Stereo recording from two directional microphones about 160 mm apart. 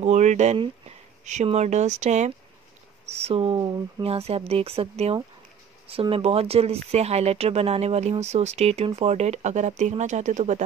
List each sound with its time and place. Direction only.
0.0 s speech: 45° right (ahead or behind)